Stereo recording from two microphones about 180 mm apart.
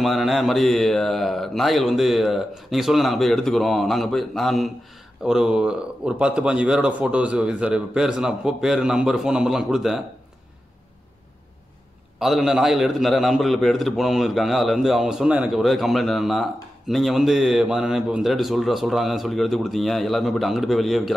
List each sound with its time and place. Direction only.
0.0 s speech: centre (ahead or behind)
12.2 s speech: centre (ahead or behind)